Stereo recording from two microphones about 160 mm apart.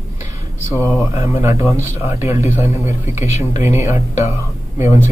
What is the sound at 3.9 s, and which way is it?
Speech, 40° left (ahead or behind).